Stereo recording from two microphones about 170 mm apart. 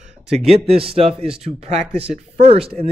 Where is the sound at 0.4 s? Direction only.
35° right (ahead or behind).